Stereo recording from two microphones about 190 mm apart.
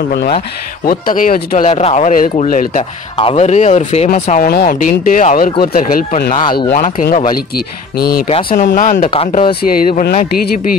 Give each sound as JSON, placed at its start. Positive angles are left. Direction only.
{"t": 0.8, "sound": "speech", "side_deg": 45}
{"t": 3.2, "sound": "speech", "side_deg": 30}
{"t": 4.1, "sound": "speech", "side_deg": 45}
{"t": 7.3, "sound": "speech", "side_deg": 55}
{"t": 8.3, "sound": "speech", "side_deg": 25}
{"t": 8.7, "sound": "speech", "side_deg": 45}
{"t": 9.1, "sound": "speech", "side_deg": 30}
{"t": 9.6, "sound": "speech", "side_deg": 50}